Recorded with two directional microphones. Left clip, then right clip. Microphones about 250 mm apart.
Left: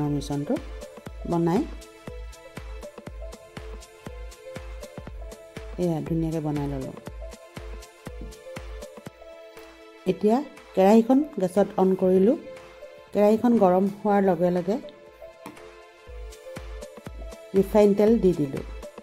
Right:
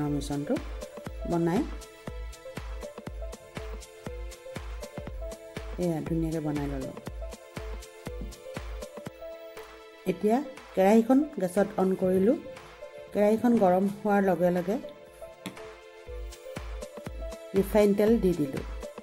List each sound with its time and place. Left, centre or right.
0.0 s speech: centre
0.6 s music: centre
1.3 s speech: centre
2.0 s music: centre
6.2 s speech: centre
6.5 s music: centre
10.0 s speech: centre
16.5 s music: centre
17.7 s speech: centre
18.4 s speech: centre